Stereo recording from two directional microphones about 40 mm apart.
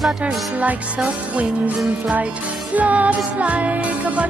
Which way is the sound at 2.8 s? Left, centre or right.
Right.